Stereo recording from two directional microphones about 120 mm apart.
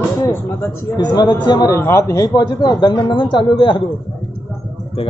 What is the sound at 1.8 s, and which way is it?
Speech, 20° left (ahead or behind).